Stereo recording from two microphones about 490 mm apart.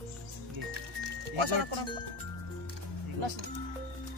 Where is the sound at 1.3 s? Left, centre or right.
Right.